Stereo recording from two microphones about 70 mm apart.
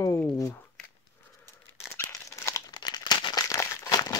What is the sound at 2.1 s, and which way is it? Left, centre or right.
Crumpling, left.